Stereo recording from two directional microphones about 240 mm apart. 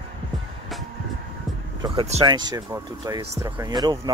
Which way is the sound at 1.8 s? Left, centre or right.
Right.